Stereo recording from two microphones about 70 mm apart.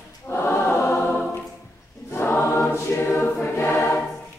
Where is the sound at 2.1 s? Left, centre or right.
Left.